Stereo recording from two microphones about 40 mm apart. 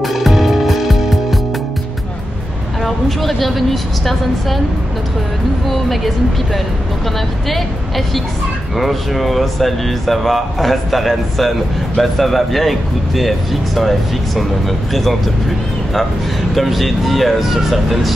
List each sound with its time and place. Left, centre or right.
0.0 s music: centre
2.8 s speech: centre
5.7 s speech: centre
8.7 s speech: centre
16.5 s speech: centre